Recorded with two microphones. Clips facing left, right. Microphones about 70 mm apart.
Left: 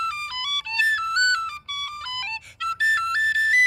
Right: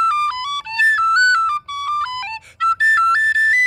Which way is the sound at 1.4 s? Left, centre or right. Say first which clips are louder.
Right 13 dB; right.